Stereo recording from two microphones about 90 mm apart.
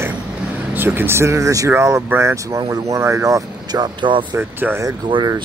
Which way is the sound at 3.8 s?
65° right (ahead or behind).